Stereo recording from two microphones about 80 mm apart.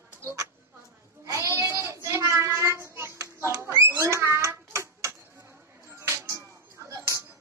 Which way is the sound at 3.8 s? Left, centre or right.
Right.